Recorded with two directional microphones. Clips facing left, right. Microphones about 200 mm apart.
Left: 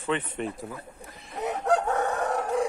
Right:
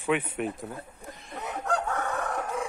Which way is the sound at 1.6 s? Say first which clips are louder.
Left 5 dB; 20° left (ahead or behind).